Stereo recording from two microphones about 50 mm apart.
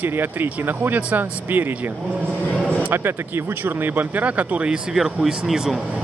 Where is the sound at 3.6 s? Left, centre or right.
Right.